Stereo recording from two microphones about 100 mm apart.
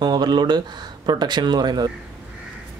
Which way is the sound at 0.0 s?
45° right (ahead or behind).